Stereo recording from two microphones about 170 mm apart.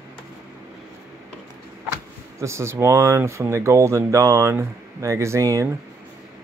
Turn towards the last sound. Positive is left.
turn(degrees=-20)  # may be behind; listen again after turning